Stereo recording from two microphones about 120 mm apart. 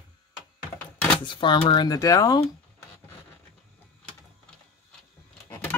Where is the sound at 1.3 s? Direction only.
40° left (ahead or behind).